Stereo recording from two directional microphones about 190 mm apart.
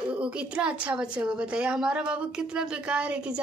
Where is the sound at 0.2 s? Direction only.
5° right (ahead or behind).